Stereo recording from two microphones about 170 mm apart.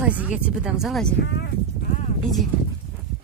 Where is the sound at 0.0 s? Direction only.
10° right (ahead or behind).